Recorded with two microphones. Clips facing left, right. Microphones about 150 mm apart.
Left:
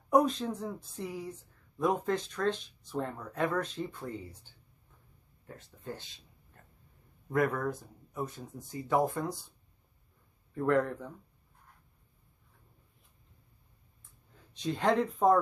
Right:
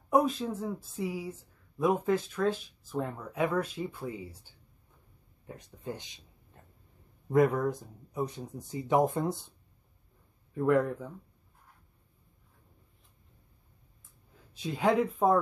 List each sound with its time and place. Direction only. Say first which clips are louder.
0.1 s speech: even; 5° right (ahead or behind)
5.5 s a man's voice: right 3 dB; 15° right (ahead or behind)
10.5 s speech: right 2 dB; 10° right (ahead or behind)
14.5 s speech: right 1 dB; 5° right (ahead or behind)